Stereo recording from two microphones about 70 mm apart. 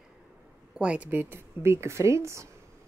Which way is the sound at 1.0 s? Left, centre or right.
Right.